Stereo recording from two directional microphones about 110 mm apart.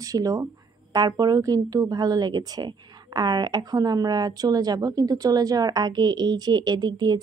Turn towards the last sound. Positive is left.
turn(degrees=-40)  # may be behind; listen again after turning